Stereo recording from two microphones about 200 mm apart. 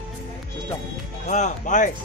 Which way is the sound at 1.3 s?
35° left (ahead or behind).